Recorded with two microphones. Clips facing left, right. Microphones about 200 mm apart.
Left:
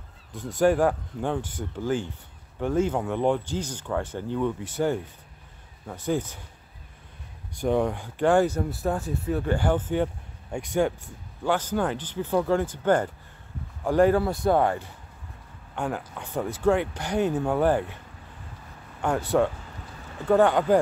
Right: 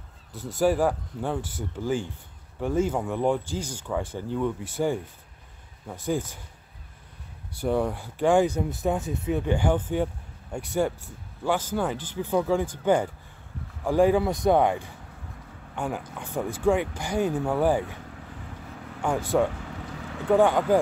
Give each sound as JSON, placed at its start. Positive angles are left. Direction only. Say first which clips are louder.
{"t": 0.3, "sound": "speech", "louder": "left 2 dB", "side_deg": -5}
{"t": 7.6, "sound": "speech", "louder": "left 1 dB", "side_deg": -5}
{"t": 19.3, "sound": "speech", "louder": "left 1 dB", "side_deg": -5}
{"t": 19.8, "sound": "a sound", "louder": "right 2 dB", "side_deg": -80}
{"t": 20.2, "sound": "speech", "louder": "even", "side_deg": -10}